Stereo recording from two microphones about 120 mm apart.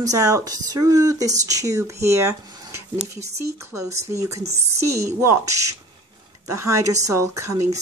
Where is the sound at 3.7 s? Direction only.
25° right (ahead or behind).